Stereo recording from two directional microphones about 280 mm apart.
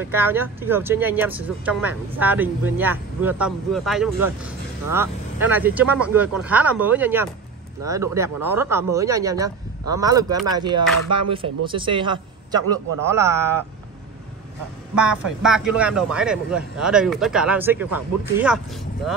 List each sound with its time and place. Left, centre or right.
0.1 s speech: centre
15.2 s speech: centre